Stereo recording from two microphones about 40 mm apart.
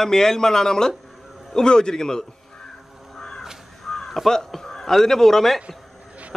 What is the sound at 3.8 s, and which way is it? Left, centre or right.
Speech, centre.